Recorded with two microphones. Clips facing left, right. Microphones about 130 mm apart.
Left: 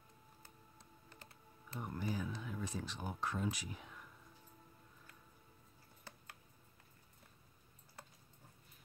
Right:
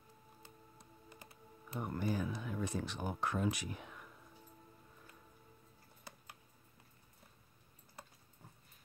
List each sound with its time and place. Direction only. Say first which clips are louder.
0.7 s computer keyboard: right 3 dB; 15° right (ahead or behind)
1.8 s speech: right 4 dB; 55° right (ahead or behind)
6.1 s a sound: right 2 dB; 10° right (ahead or behind)